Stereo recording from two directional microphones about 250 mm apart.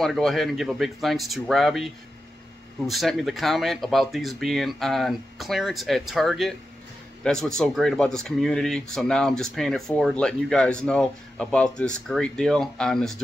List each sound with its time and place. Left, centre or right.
0.0 s speech: centre
2.9 s speech: centre